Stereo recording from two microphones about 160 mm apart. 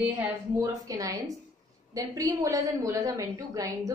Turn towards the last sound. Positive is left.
turn(degrees=-20)  # may be behind; listen again after turning